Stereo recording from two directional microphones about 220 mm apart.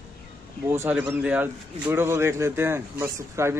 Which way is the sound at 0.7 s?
10° right (ahead or behind).